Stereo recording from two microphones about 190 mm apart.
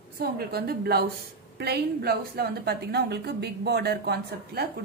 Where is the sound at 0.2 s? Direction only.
55° right (ahead or behind).